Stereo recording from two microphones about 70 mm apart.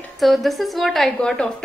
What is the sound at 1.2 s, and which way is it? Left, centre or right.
Speech, centre.